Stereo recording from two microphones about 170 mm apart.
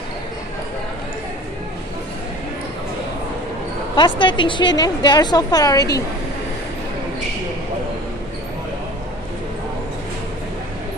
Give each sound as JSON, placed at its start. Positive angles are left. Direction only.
{"t": 3.9, "sound": "a woman's voice", "side_deg": 30}